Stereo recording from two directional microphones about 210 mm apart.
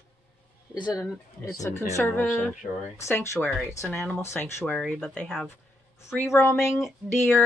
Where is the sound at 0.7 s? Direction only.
20° left (ahead or behind).